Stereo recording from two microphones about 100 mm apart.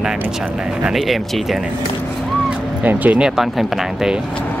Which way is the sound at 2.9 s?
15° right (ahead or behind).